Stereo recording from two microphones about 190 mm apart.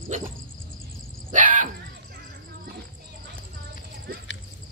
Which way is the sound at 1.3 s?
45° right (ahead or behind).